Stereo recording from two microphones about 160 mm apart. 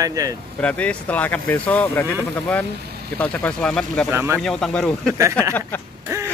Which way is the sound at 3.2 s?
10° left (ahead or behind).